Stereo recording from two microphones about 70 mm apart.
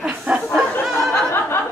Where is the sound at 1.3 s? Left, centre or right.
Left.